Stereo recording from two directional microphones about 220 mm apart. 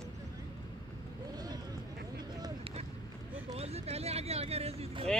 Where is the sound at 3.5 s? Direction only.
30° right (ahead or behind).